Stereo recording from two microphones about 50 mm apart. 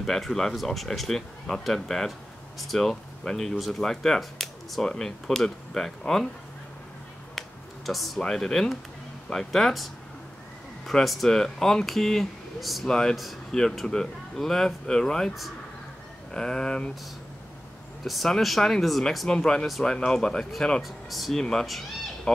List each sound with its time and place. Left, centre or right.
0.0 s speech: centre
3.8 s speech: centre
7.3 s a sound: centre
8.3 s speech: centre
10.9 s speech: centre
12.8 s speech: centre
13.1 s speech: centre
16.3 s speech: centre
18.0 s speech: centre
20.8 s speech: centre
21.4 s speech: centre